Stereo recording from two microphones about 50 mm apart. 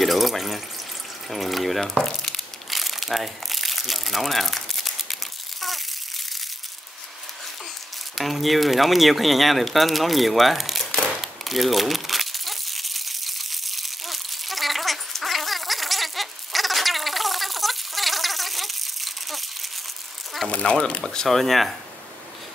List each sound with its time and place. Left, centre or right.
0.0 s water: centre
1.3 s crumpling: centre
8.2 s speech: centre
11.1 s crumpling: centre
20.4 s speech: centre